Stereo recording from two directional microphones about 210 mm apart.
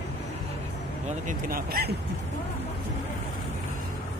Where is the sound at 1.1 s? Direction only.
40° right (ahead or behind).